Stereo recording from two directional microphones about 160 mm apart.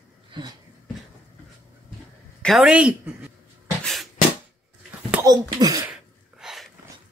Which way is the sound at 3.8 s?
Centre (ahead or behind).